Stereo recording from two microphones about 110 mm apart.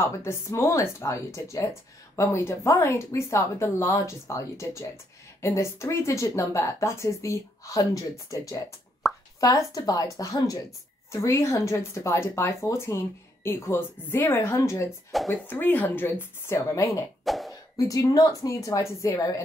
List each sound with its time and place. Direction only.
0.0 s speech: 25° left (ahead or behind)
9.0 s plop: centre (ahead or behind)
9.4 s speech: 30° left (ahead or behind)
14.9 s speech: centre (ahead or behind)
15.3 s speech: 15° left (ahead or behind)
17.2 s cough: centre (ahead or behind)
17.7 s speech: 30° left (ahead or behind)